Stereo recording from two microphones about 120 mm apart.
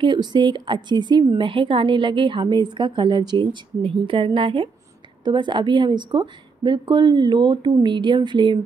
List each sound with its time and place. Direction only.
0.0 s a woman's voice: 40° right (ahead or behind)